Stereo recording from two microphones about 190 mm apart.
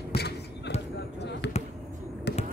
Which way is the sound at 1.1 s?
65° left (ahead or behind).